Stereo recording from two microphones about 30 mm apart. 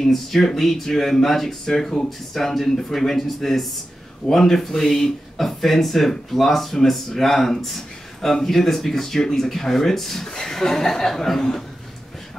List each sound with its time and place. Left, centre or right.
0.0 s speech: centre